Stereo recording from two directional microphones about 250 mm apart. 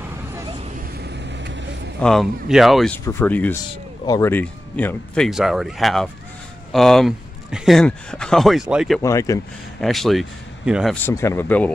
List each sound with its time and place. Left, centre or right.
0.9 s vehicle: right
2.0 s speech: centre
9.0 s speech: centre
9.8 s speech: centre
11.1 s speech: centre